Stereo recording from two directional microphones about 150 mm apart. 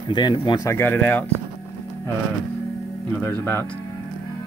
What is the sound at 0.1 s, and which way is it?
Speech, 30° left (ahead or behind).